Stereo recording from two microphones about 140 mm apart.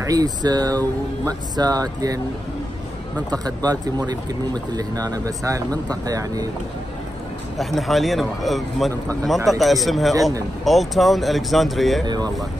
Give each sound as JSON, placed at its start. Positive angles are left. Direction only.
{"t": 0.0, "sound": "speech", "side_deg": -25}
{"t": 3.3, "sound": "speech", "side_deg": -30}
{"t": 7.5, "sound": "speech", "side_deg": 0}